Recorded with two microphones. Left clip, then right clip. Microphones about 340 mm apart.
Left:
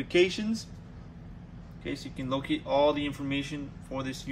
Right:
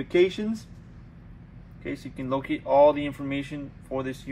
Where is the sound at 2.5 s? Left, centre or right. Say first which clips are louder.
Right 7 dB; centre.